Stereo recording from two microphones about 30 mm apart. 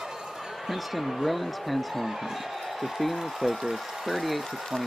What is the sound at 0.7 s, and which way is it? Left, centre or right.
Speech, centre.